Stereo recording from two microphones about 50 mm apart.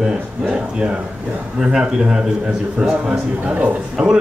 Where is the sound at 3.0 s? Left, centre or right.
Right.